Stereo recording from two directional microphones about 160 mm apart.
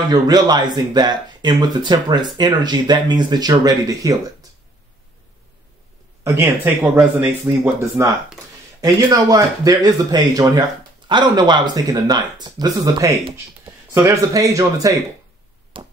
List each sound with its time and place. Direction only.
0.1 s speech: 25° right (ahead or behind)
6.2 s speech: 15° right (ahead or behind)
15.7 s chop: 30° right (ahead or behind)